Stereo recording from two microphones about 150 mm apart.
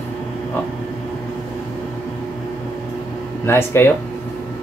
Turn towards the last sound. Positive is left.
turn(degrees=15)  # may be behind; listen again after turning